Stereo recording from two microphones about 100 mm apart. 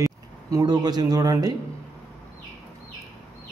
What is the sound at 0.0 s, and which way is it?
Speech, 35° right (ahead or behind).